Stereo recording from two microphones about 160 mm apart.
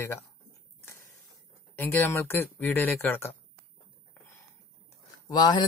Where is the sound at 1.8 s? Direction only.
15° left (ahead or behind).